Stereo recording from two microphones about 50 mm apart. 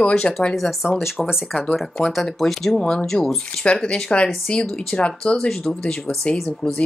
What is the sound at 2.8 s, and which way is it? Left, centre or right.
Speech, centre.